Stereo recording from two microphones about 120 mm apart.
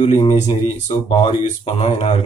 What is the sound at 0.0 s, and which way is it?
Speech, 50° left (ahead or behind).